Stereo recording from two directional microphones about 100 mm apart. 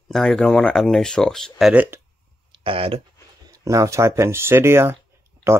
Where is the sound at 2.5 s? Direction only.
65° right (ahead or behind).